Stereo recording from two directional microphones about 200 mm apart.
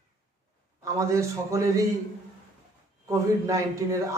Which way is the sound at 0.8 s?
15° right (ahead or behind).